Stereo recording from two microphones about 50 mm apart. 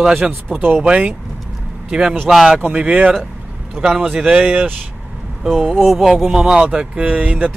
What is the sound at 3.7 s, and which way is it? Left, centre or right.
Speech, centre.